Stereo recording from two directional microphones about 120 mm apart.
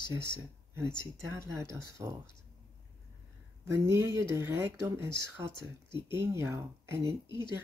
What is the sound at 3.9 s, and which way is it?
Speech, 25° right (ahead or behind).